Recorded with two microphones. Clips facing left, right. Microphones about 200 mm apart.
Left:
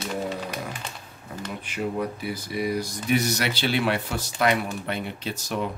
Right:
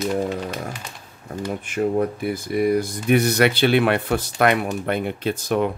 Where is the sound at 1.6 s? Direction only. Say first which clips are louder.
Right 7 dB; 50° right (ahead or behind).